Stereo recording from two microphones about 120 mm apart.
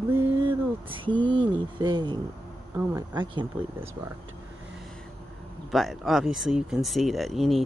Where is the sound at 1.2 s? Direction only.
40° right (ahead or behind).